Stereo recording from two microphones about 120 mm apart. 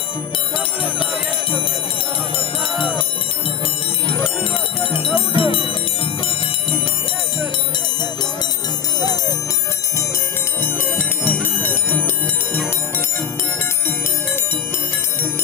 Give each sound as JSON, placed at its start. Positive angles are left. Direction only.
{"t": 4.9, "sound": "music", "side_deg": 50}
{"t": 10.6, "sound": "bell", "side_deg": 15}